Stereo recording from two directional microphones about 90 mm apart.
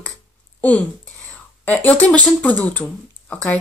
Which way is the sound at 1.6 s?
15° left (ahead or behind).